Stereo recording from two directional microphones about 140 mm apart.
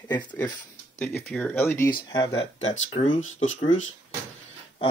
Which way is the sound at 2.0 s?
35° left (ahead or behind).